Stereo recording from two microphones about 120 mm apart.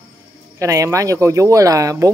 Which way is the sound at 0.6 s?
25° right (ahead or behind).